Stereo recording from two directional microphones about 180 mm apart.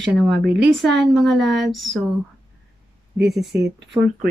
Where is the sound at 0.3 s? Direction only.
70° right (ahead or behind).